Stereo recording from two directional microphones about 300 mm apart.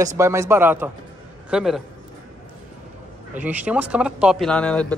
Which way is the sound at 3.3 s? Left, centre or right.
Centre.